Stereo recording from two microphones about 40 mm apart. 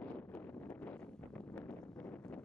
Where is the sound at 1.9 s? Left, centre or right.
Left.